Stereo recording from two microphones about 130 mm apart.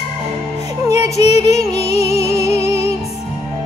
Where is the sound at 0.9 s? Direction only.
50° left (ahead or behind).